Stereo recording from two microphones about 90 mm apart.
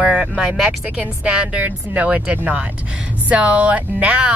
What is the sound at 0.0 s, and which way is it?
Speech, 15° right (ahead or behind).